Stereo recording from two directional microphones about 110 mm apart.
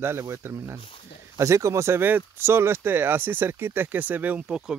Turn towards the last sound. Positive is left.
turn(degrees=-5)  # may be behind; listen again after turning